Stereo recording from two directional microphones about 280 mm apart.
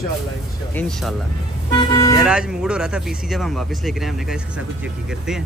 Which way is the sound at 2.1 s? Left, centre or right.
Centre.